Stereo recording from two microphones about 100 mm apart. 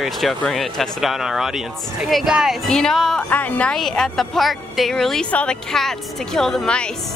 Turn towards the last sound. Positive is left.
turn(degrees=10)  # may be behind; listen again after turning